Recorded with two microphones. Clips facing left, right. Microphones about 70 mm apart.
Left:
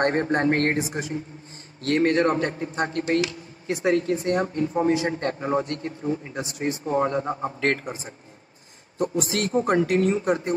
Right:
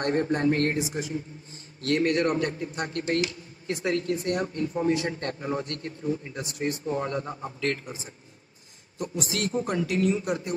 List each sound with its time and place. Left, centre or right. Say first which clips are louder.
0.0 s a man's voice: left 3 dB; left
1.8 s speech: left 3 dB; left
7.4 s a man's voice: left 5 dB; left